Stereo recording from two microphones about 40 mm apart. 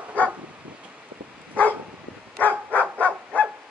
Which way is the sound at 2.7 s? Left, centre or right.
Left.